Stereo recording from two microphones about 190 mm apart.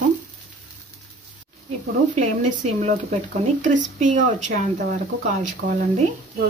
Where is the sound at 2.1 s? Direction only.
40° right (ahead or behind).